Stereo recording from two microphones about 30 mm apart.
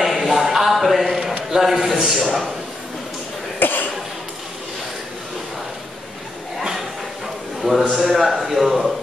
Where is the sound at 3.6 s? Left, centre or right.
Left.